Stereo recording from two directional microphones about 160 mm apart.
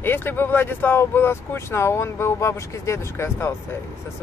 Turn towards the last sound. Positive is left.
turn(degrees=15)  # may be behind; listen again after turning